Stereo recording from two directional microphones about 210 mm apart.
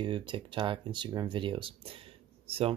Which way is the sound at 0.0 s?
25° right (ahead or behind).